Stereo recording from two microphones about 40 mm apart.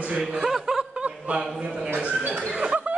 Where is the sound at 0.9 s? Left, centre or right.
Right.